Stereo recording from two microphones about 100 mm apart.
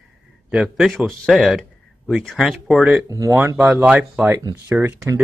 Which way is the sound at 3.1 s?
35° right (ahead or behind).